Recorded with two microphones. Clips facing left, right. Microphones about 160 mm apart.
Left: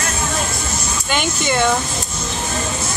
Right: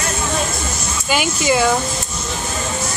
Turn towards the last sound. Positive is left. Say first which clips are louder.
# right 2 dB
turn(degrees=-5)  # may be behind; listen again after turning